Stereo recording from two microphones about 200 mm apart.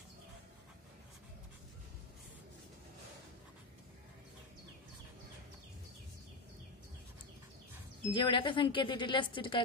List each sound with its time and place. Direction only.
8.1 s speech: 25° left (ahead or behind)